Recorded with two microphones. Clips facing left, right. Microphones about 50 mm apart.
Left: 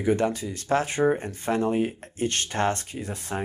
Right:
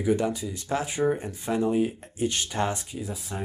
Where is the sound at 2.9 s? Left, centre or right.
Left.